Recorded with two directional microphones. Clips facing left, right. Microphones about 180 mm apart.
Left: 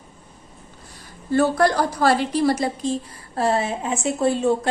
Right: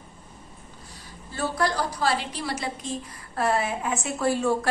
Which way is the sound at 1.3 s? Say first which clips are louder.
Left 9 dB; 55° left (ahead or behind).